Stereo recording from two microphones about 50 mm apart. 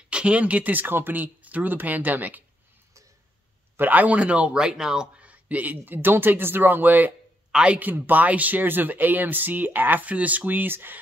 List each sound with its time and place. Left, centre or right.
0.1 s speech: right
3.7 s speech: right; by 5.2 s centre
5.2 s speech: right
7.5 s speech: right
7.8 s speech: right